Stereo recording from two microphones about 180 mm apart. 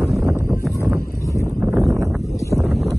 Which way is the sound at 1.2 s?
15° left (ahead or behind).